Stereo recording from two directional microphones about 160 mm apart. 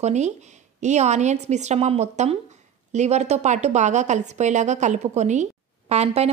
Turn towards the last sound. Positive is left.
turn(degrees=-40)  # may be behind; listen again after turning